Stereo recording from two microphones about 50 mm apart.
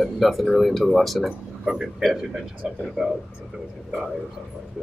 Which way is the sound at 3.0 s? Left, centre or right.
Centre.